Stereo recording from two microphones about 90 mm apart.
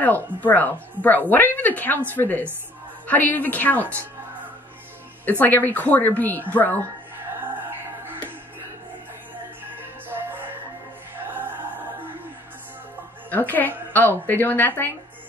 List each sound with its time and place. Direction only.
0.0 s a woman's voice: 20° left (ahead or behind)
3.8 s speech: 25° right (ahead or behind)
5.4 s a woman's voice: 20° left (ahead or behind)
7.7 s music: 25° right (ahead or behind)
10.0 s music: 25° right (ahead or behind)
13.3 s a woman's voice: 20° left (ahead or behind)